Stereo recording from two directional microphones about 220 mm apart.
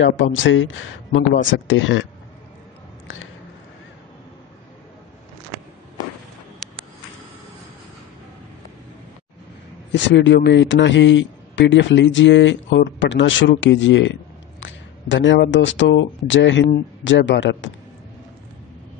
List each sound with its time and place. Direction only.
0.0 s a man's voice: 60° left (ahead or behind)
9.9 s a man's voice: 55° left (ahead or behind)